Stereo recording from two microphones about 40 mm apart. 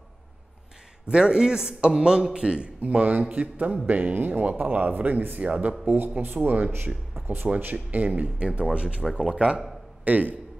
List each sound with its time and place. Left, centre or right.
1.1 s speech: centre
2.8 s speech: right
5.9 s speech: right
6.2 s speech: right
7.2 s a sound: right
7.7 s speech: right; by 9.6 s centre
10.0 s speech: right